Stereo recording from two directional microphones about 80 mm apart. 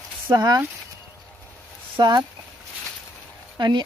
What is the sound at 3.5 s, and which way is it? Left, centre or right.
Speech, right.